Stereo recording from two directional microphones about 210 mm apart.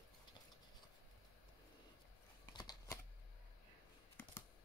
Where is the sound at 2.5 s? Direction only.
20° left (ahead or behind).